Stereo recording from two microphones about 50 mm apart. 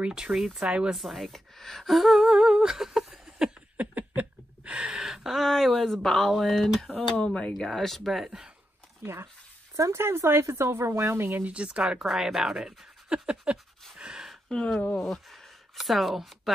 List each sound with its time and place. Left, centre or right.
0.0 s speech: centre
0.9 s speech: centre
2.2 s speech: centre
3.3 s a sound: centre
3.7 s a sound: right; by 6.7 s centre
7.0 s speech: left
7.5 s speech: centre
9.0 s speech: right
11.4 s speech: right
12.3 s speech: centre
13.1 s speech: right
13.9 s a sound: centre
14.5 s speech: centre
15.0 s speech: centre